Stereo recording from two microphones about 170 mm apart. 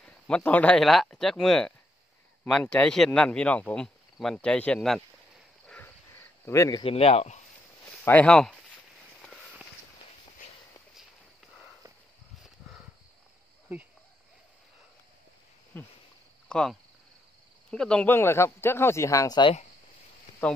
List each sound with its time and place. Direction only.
0.0 s speech: 5° left (ahead or behind)
6.4 s speech: 20° left (ahead or behind)
6.8 s a man's voice: 35° left (ahead or behind)
8.0 s speech: 10° left (ahead or behind)
9.2 s a sound: 5° left (ahead or behind)
15.7 s speech: 10° left (ahead or behind)
16.4 s cricket: 5° left (ahead or behind)
17.6 s speech: 5° left (ahead or behind); by 19.5 s 25° left (ahead or behind)
20.4 s speech: 5° left (ahead or behind)